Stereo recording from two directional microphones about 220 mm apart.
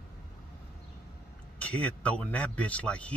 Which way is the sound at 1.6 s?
5° left (ahead or behind).